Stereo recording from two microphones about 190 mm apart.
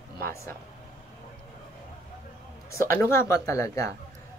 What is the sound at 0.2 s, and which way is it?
Speech, 10° left (ahead or behind).